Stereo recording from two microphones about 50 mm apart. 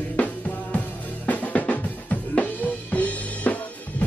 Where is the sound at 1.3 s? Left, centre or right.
Left.